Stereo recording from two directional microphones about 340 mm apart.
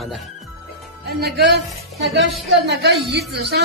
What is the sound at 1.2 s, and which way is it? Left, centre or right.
A woman's voice, right.